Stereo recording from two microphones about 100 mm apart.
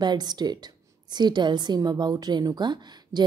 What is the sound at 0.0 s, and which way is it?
A woman's voice, 45° right (ahead or behind).